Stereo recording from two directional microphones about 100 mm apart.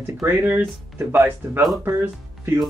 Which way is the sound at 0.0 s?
25° right (ahead or behind).